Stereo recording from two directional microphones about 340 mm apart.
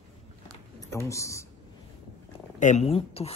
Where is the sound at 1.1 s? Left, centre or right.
Centre.